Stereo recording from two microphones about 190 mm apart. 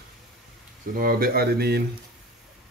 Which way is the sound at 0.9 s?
50° right (ahead or behind).